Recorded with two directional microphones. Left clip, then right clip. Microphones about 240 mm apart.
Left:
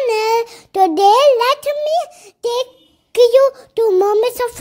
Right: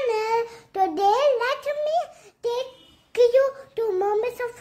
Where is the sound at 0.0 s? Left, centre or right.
Left.